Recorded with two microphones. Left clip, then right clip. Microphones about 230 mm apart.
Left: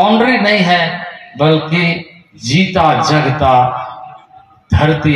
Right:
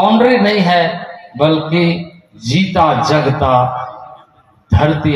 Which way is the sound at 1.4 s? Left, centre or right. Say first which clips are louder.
Even; left.